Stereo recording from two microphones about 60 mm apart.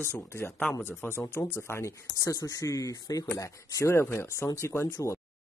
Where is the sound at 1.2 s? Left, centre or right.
Left.